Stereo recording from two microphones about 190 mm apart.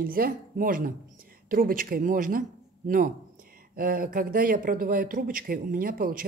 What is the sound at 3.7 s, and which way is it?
Speech, 50° right (ahead or behind).